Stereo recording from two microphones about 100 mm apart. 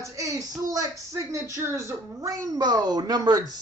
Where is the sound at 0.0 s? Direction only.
35° right (ahead or behind).